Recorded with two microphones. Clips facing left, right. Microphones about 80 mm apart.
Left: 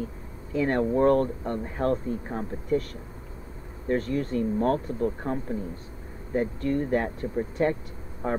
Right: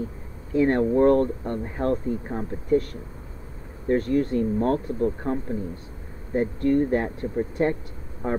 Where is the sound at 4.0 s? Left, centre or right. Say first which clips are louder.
Right 5 dB; right.